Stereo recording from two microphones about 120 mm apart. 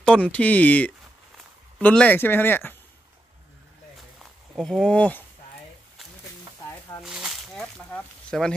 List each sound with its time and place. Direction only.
0.0 s speech: 10° left (ahead or behind)
4.2 s speech: centre (ahead or behind)
7.0 s a sound: 5° right (ahead or behind)
7.9 s speech: 5° left (ahead or behind)